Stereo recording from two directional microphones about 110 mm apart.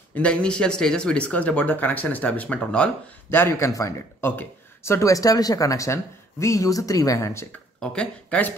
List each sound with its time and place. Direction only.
0.1 s speech: 10° left (ahead or behind)
7.8 s speech: 10° left (ahead or behind)